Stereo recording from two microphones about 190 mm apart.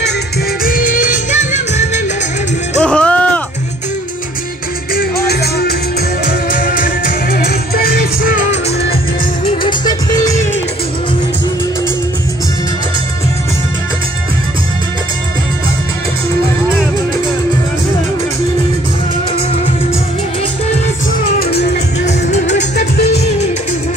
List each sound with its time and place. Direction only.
0.7 s music: 45° left (ahead or behind)
2.8 s music: 5° left (ahead or behind)
4.9 s music: 55° left (ahead or behind); by 8.7 s 40° left (ahead or behind)
9.5 s music: 25° left (ahead or behind)
21.4 s music: 55° left (ahead or behind)
22.0 s music: 35° left (ahead or behind)
22.8 s music: 60° left (ahead or behind)
23.1 s music: 35° left (ahead or behind)